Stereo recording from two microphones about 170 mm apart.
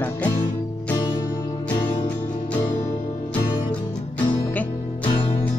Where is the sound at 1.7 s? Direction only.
25° left (ahead or behind).